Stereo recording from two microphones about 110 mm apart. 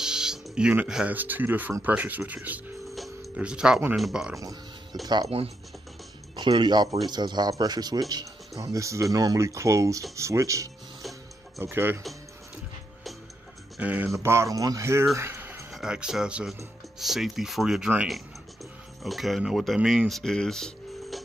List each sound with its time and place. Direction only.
0.0 s a sound: 5° right (ahead or behind)
1.1 s speech: 15° right (ahead or behind)
5.0 s speech: 40° right (ahead or behind)
6.3 s speech: 45° right (ahead or behind); by 10.7 s 30° right (ahead or behind)
11.0 s music: centre (ahead or behind)
11.6 s speech: 20° right (ahead or behind)
13.7 s speech: 15° right (ahead or behind)
14.1 s speech: 25° right (ahead or behind)
15.1 s a sound: 20° right (ahead or behind)
15.7 s speech: 5° right (ahead or behind)